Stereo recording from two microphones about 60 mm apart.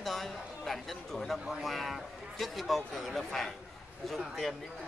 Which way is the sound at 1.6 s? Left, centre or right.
Centre.